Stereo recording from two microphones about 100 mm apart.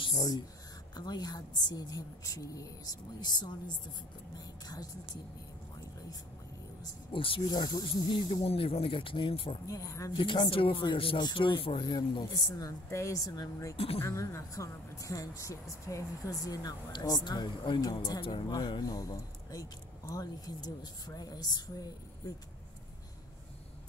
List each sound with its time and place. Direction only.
0.1 s a woman's voice: 40° left (ahead or behind)
7.1 s speech: 60° left (ahead or behind)
7.5 s a woman's voice: 50° left (ahead or behind)
8.4 s speech: 70° left (ahead or behind)
9.7 s speech: 35° left (ahead or behind)
10.1 s speech: 50° left (ahead or behind)
11.8 s speech: 45° left (ahead or behind)